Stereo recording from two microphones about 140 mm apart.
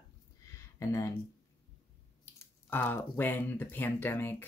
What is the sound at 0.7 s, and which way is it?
Speech, 20° left (ahead or behind).